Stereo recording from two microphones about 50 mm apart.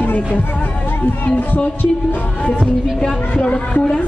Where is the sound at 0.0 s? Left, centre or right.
Left.